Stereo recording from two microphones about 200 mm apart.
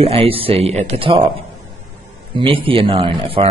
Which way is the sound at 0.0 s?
30° right (ahead or behind).